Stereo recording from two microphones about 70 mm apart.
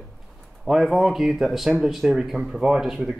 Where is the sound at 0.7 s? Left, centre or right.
Centre.